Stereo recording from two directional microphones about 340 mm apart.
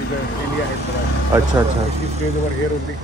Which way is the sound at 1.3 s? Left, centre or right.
Centre.